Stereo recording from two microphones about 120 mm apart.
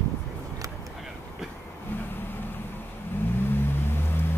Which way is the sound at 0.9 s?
Centre (ahead or behind).